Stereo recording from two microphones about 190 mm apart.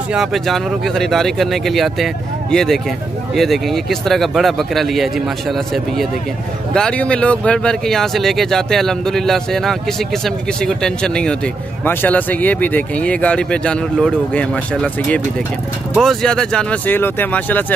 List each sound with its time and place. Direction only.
0.1 s speech: centre (ahead or behind)
6.7 s speech: 5° left (ahead or behind)
15.9 s speech: centre (ahead or behind)